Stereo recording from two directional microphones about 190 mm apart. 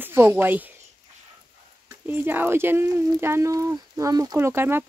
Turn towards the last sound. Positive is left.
turn(degrees=-10)  # may be behind; listen again after turning